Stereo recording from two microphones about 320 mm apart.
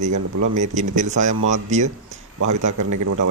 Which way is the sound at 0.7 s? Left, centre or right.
Right.